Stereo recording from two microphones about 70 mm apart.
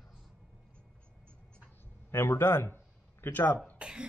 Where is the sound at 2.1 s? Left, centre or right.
Left.